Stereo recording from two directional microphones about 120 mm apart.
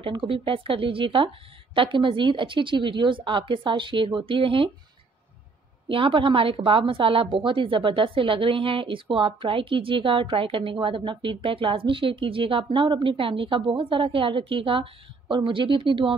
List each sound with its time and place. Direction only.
0.0 s speech: 45° right (ahead or behind)
5.9 s speech: 45° right (ahead or behind)